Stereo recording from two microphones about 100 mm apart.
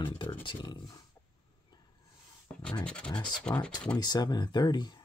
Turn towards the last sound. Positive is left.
turn(degrees=45)  # may be behind; listen again after turning